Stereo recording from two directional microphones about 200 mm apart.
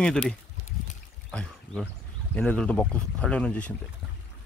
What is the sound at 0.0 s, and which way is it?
Speech, 5° left (ahead or behind).